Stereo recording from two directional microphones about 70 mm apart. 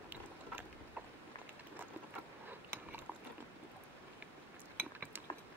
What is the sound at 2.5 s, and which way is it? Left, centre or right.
Biting, right.